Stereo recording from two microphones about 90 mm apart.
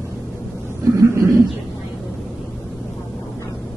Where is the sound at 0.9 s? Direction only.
35° right (ahead or behind).